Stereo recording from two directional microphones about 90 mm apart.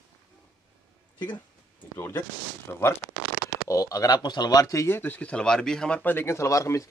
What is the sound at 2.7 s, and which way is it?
Speech, 25° left (ahead or behind).